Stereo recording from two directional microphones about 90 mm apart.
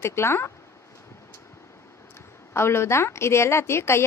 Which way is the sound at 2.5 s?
30° left (ahead or behind).